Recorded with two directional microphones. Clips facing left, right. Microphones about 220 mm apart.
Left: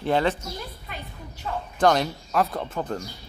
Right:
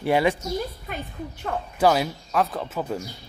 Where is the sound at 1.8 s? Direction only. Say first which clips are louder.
Even; 5° right (ahead or behind).